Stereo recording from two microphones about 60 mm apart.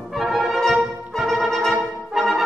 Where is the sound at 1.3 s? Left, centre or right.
Centre.